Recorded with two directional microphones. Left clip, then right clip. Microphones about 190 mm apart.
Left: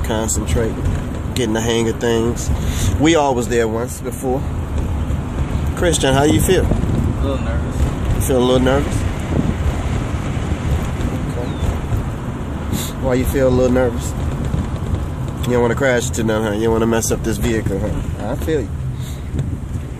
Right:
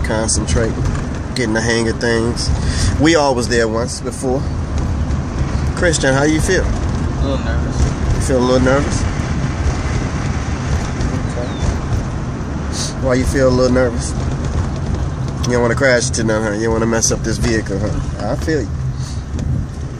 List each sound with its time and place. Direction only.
0.1 s speech: 10° left (ahead or behind)
5.8 s speech: 15° left (ahead or behind)
8.3 s speech: 15° left (ahead or behind)
13.1 s speech: 5° left (ahead or behind)
15.4 s speech: 10° left (ahead or behind)